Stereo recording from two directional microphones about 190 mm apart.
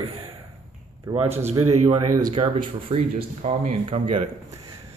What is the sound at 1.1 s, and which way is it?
Speech, 20° right (ahead or behind).